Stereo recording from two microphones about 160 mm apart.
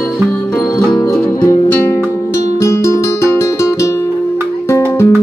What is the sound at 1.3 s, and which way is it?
Music, 20° left (ahead or behind).